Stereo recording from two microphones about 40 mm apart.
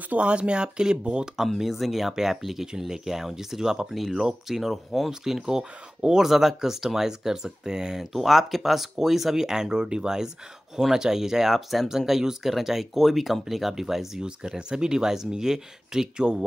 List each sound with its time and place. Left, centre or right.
0.1 s speech: right
1.6 s speech: centre
8.0 s speech: centre
11.5 s speech: centre
14.2 s speech: centre